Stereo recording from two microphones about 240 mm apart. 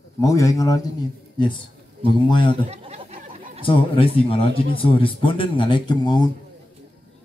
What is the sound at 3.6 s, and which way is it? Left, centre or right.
Speech, left.